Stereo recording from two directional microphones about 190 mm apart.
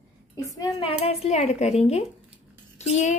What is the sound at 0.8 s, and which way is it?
A woman's voice, 30° left (ahead or behind).